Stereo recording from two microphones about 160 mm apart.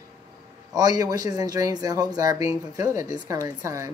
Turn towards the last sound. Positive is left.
turn(degrees=-20)  # may be behind; listen again after turning